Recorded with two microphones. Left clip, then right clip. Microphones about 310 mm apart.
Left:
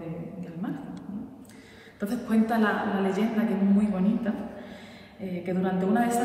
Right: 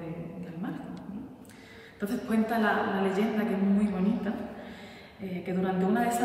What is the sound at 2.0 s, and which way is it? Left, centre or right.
A woman's voice, centre.